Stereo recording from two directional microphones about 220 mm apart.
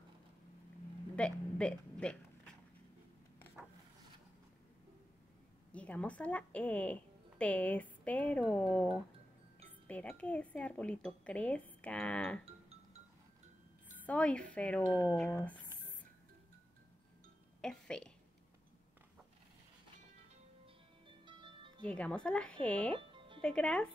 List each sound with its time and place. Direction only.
1.1 s a sound: 5° left (ahead or behind)
5.7 s a woman's voice: 5° left (ahead or behind)
14.0 s speech: 5° left (ahead or behind)
17.6 s speech: 5° left (ahead or behind)
21.3 s music: 20° right (ahead or behind)
21.8 s speech: 5° left (ahead or behind)
22.9 s music: 25° right (ahead or behind)
23.4 s speech: 5° left (ahead or behind)